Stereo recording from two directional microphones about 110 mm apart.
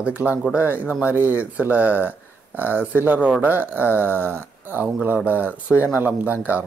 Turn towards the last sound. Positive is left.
turn(degrees=-15)  # may be behind; listen again after turning